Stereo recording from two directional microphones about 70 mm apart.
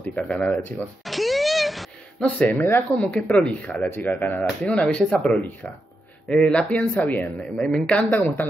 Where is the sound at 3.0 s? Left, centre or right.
Centre.